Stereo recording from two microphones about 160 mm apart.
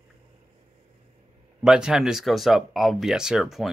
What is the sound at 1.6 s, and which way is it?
Speech, 5° right (ahead or behind).